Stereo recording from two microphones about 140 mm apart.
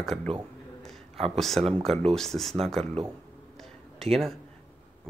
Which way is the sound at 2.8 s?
45° right (ahead or behind).